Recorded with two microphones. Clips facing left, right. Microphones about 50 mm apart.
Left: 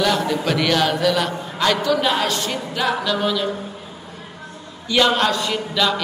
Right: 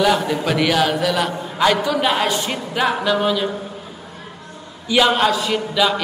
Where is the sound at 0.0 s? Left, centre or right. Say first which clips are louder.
Right 2 dB; centre.